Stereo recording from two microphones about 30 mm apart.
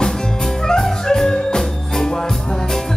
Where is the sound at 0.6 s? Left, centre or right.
Centre.